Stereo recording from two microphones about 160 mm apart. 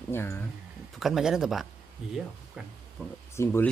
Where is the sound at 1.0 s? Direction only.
Centre (ahead or behind).